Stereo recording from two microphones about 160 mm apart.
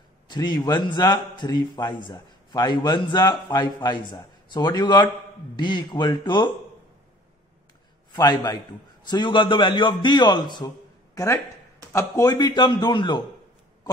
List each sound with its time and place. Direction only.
0.3 s a man's voice: 25° left (ahead or behind)
8.1 s a man's voice: 25° left (ahead or behind)
11.1 s a man's voice: 15° left (ahead or behind)